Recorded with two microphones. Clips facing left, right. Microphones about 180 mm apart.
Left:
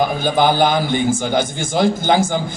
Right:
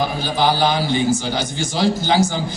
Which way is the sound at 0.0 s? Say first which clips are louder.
Left 3 dB; 50° left (ahead or behind).